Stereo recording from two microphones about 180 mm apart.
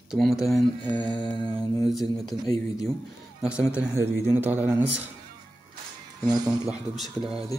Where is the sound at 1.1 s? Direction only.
25° left (ahead or behind).